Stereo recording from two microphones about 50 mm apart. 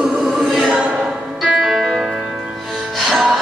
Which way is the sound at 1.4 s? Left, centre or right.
Centre.